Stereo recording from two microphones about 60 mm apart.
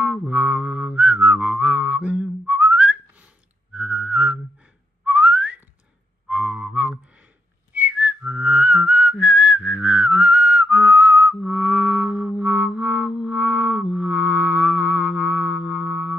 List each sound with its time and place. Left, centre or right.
0.3 s whistling: right
3.7 s music: right
5.0 s whistling: right
6.2 s music: centre
7.7 s whistling: right
11.4 s music: right